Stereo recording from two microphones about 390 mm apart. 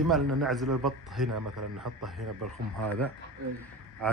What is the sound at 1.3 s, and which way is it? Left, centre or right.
Speech, right.